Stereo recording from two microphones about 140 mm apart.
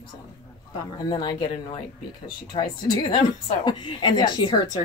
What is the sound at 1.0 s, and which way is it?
Speech, 30° left (ahead or behind).